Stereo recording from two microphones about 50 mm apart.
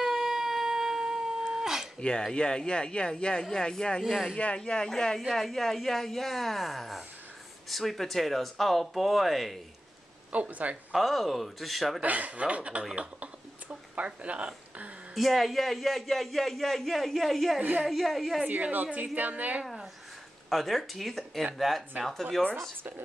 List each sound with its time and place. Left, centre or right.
0.0 s a sound: centre
2.0 s speech: centre
4.0 s a man's voice: centre
4.6 s a man's voice: centre
10.3 s speech: right
10.9 s a man's voice: centre
12.0 s speech: right
12.9 s a sound: right
15.1 s a man's voice: centre
17.6 s a woman's voice: right
17.8 s a man's voice: centre
18.4 s a woman's voice: right
19.6 s a sound: centre
20.4 s a man's voice: centre